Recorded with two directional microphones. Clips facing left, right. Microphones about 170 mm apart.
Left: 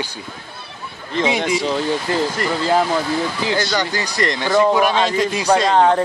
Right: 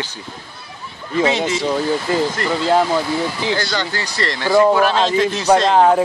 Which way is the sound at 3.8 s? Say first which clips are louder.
Left 2 dB; 15° left (ahead or behind).